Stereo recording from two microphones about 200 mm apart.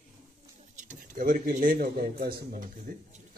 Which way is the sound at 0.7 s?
40° right (ahead or behind).